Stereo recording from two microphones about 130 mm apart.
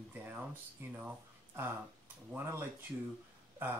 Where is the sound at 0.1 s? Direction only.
15° right (ahead or behind).